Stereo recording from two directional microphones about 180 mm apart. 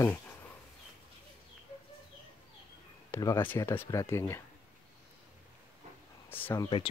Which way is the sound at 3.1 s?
15° left (ahead or behind).